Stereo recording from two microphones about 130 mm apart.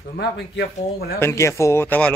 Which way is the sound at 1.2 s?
20° left (ahead or behind).